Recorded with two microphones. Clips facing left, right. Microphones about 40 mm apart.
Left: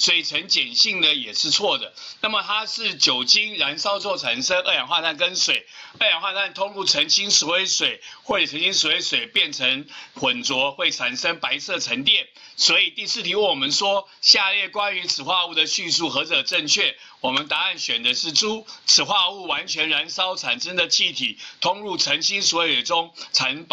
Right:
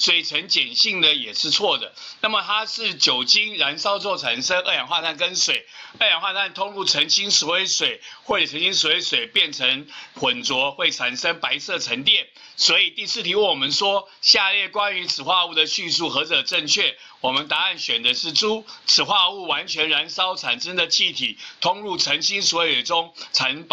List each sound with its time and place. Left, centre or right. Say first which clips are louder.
0.0 s speech: right 1 dB; centre
5.9 s speech: right 1 dB; centre